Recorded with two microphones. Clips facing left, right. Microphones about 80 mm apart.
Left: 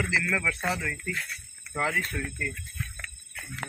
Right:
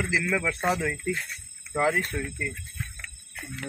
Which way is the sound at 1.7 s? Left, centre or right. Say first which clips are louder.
Right 4 dB; centre.